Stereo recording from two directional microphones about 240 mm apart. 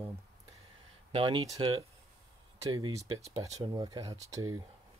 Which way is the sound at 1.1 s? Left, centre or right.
Centre.